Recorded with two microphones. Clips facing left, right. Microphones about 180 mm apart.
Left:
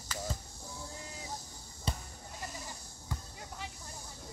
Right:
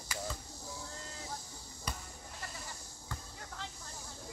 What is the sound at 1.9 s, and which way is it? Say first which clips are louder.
Basketball bounce: left 5 dB; 25° left (ahead or behind).